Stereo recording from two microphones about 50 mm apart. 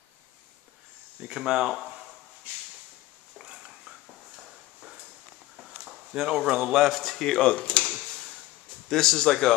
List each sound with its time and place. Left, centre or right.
1.2 s speech: centre
3.3 s whispering: right
5.6 s a sound: centre
7.0 s speech: centre
8.8 s speech: centre